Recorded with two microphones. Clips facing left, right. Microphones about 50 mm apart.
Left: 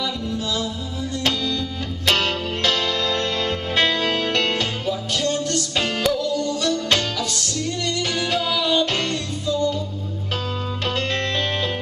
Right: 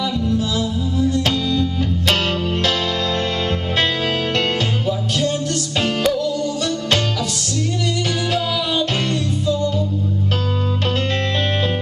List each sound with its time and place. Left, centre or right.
0.6 s music: centre
3.7 s music: centre